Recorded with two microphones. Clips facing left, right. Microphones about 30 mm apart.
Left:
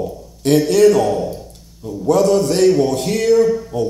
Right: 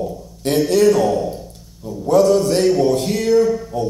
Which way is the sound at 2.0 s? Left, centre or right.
Left.